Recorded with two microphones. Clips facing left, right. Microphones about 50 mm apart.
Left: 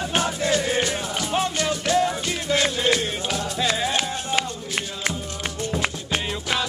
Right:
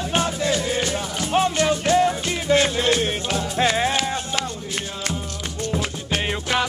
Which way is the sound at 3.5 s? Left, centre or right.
Right.